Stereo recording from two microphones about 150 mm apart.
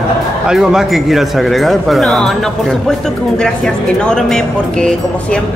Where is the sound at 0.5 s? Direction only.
5° right (ahead or behind).